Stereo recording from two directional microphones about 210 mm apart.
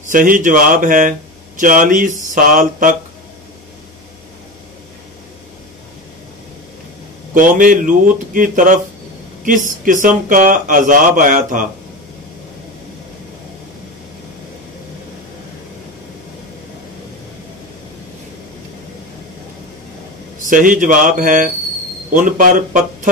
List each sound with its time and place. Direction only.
0.0 s speech: 40° right (ahead or behind)
7.3 s speech: 40° right (ahead or behind)
20.4 s speech: 40° right (ahead or behind)